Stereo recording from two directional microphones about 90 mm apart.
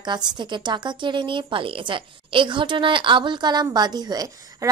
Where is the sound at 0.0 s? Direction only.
55° right (ahead or behind).